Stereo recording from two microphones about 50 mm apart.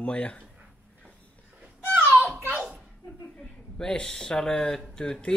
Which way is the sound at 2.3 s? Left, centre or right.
Right.